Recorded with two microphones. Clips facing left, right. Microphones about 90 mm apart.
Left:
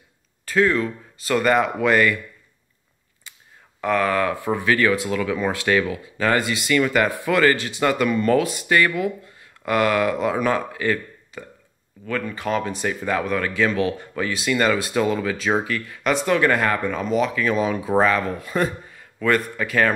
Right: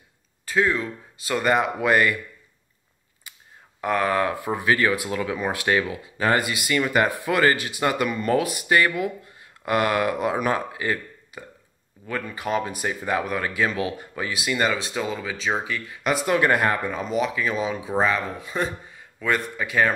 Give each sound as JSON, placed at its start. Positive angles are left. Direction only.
{"t": 0.5, "sound": "speech", "side_deg": -10}
{"t": 3.8, "sound": "speech", "side_deg": -25}
{"t": 14.8, "sound": "speech", "side_deg": 5}
{"t": 15.0, "sound": "speech", "side_deg": -10}
{"t": 15.3, "sound": "speech", "side_deg": 5}
{"t": 15.6, "sound": "speech", "side_deg": -5}
{"t": 16.3, "sound": "speech", "side_deg": -20}
{"t": 16.8, "sound": "speech", "side_deg": -5}